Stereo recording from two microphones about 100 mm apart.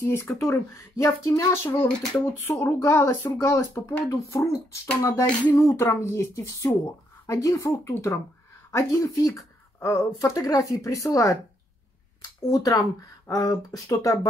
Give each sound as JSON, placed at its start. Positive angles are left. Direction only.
{"t": 0.0, "sound": "speech", "side_deg": 25}
{"t": 12.4, "sound": "speech", "side_deg": 35}